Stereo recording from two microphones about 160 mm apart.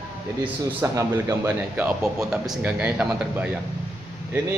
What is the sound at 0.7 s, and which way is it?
Mantra, 15° right (ahead or behind).